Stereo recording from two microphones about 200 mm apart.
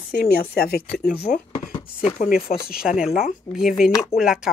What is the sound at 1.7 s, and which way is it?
Speech, 30° left (ahead or behind).